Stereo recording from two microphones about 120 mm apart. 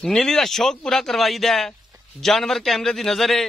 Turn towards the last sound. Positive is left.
turn(degrees=0)  # may be behind; listen again after turning